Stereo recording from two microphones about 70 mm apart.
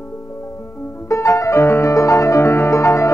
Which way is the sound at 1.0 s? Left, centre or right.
Left.